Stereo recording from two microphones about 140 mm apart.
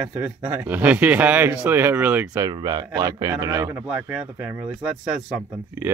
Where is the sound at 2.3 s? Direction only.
25° right (ahead or behind).